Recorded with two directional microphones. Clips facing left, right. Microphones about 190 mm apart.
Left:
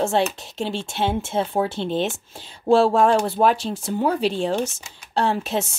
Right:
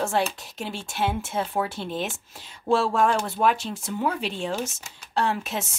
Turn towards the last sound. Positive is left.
turn(degrees=30)  # may be behind; listen again after turning